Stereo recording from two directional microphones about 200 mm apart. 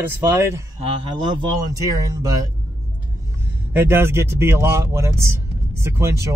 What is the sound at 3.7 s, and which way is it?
Speech, 10° right (ahead or behind).